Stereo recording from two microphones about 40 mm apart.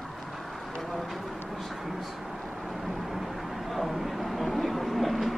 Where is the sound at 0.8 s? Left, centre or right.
Centre.